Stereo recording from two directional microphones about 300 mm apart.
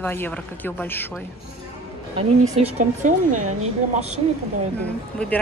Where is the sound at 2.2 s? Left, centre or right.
Right.